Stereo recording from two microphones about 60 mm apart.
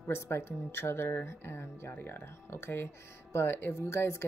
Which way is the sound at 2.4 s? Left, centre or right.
Left.